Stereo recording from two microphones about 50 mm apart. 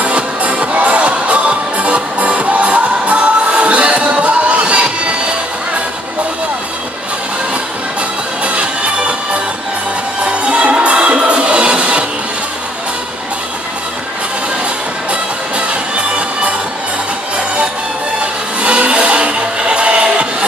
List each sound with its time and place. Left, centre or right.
0.0 s music: right
8.5 s music: right
15.5 s music: right
18.2 s music: right